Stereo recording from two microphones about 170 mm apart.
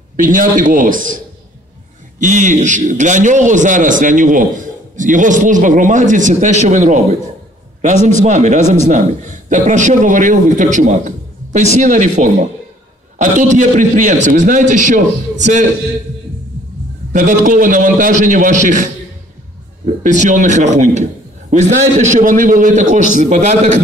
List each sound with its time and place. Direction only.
0.2 s a man's voice: 50° right (ahead or behind)
17.1 s a man's voice: 45° right (ahead or behind)
20.0 s a man's voice: 45° right (ahead or behind)